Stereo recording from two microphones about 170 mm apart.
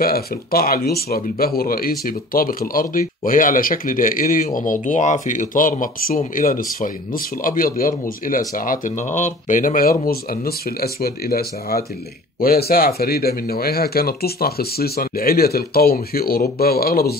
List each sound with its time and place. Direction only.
0.0 s speech: 60° left (ahead or behind)